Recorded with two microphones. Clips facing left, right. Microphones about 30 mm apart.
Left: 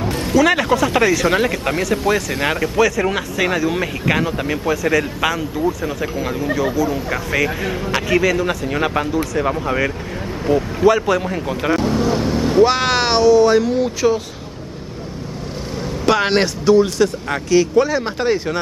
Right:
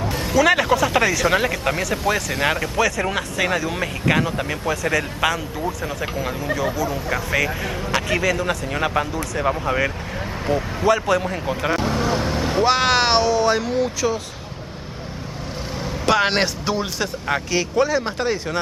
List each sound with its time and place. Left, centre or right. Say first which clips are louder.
0.1 s speech: left 2 dB; centre
16.1 s speech: left 2 dB; centre
16.6 s speech: left 10 dB; centre
17.8 s speech: left 3 dB; centre